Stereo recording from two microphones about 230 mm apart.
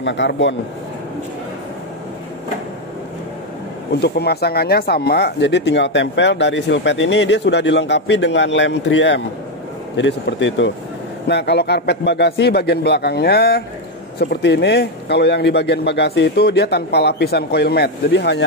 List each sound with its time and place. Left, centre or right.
0.0 s speech: left
3.9 s speech: left